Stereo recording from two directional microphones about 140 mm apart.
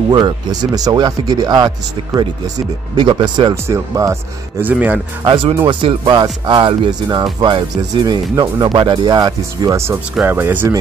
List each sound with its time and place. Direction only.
0.1 s speech: 30° right (ahead or behind)
3.0 s speech: 35° right (ahead or behind)
3.6 s speech: 20° right (ahead or behind)
5.2 s speech: 35° right (ahead or behind); by 10.7 s 15° right (ahead or behind)